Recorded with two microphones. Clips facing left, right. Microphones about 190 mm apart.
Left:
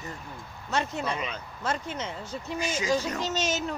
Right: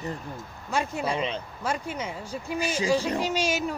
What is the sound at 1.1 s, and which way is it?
Speech, 30° right (ahead or behind).